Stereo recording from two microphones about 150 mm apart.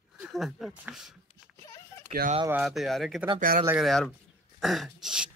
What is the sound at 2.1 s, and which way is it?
Speech, 50° right (ahead or behind).